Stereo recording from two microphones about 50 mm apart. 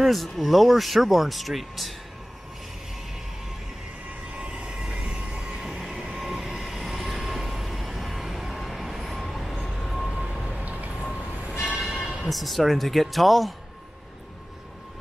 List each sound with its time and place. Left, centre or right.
0.0 s speech: centre
4.3 s train: right
5.6 s train: centre
10.6 s a sound: right
11.8 s a sound: centre
12.2 s speech: centre